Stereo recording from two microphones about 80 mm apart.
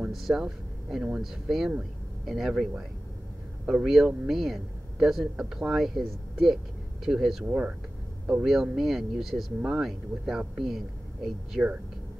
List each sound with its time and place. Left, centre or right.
0.1 s a man's voice: centre
7.4 s speech: centre
8.5 s a man's voice: centre